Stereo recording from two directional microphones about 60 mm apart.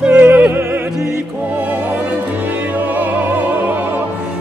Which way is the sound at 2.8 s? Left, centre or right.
Right.